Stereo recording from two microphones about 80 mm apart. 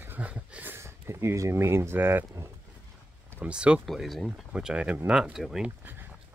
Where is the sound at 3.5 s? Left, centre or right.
Centre.